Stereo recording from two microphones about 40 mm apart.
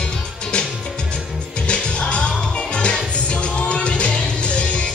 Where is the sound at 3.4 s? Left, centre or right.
Left.